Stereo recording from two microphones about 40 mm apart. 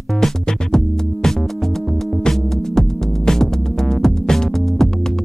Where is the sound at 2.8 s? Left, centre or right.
Centre.